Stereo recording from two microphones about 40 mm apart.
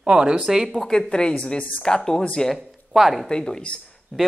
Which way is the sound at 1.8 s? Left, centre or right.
Centre.